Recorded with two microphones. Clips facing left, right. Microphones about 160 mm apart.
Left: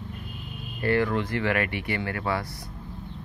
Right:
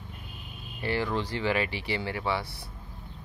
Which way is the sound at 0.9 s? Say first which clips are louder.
Left 4 dB; 30° right (ahead or behind).